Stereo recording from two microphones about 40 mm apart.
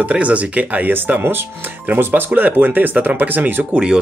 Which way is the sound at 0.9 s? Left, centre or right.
Right.